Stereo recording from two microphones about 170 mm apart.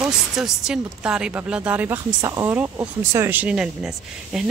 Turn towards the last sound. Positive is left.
turn(degrees=-5)  # may be behind; listen again after turning